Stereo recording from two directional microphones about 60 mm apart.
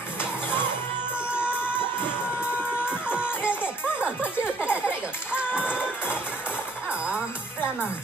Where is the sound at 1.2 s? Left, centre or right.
Centre.